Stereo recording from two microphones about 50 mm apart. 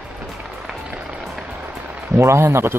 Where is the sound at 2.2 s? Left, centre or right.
Right.